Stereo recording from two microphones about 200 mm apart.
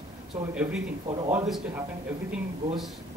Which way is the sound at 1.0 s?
25° right (ahead or behind).